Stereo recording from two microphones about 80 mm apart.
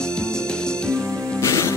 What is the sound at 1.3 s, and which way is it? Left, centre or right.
Music, left.